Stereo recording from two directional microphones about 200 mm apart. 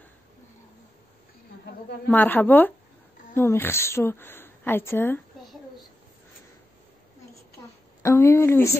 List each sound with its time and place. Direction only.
2.0 s speech: 10° left (ahead or behind)
8.0 s speech: 15° left (ahead or behind)